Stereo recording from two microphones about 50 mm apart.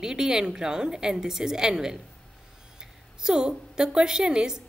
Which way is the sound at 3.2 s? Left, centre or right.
Centre.